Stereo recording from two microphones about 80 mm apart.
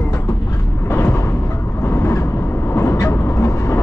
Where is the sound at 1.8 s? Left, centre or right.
Left.